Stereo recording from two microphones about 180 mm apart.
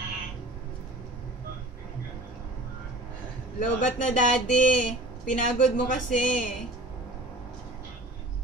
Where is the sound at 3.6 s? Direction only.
45° left (ahead or behind).